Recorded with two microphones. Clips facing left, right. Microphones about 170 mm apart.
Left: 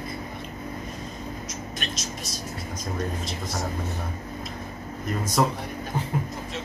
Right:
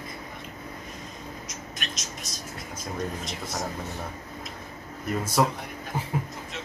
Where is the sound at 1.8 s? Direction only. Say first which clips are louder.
Left 4 dB; 30° left (ahead or behind).